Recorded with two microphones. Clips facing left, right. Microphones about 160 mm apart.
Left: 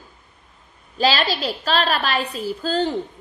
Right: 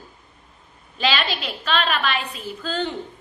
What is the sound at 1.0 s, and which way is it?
A woman's voice, 35° left (ahead or behind).